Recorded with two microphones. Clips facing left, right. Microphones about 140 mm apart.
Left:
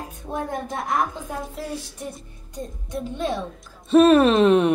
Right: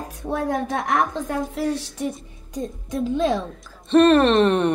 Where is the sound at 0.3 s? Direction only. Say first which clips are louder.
Right 5 dB; 90° right.